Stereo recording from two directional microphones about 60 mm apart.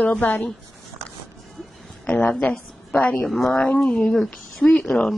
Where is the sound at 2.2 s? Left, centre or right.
Left.